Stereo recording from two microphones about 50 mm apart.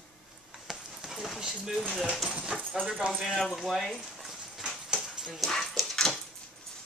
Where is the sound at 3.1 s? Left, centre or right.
Centre.